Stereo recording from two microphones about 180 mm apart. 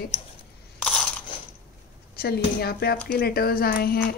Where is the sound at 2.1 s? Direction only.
60° left (ahead or behind).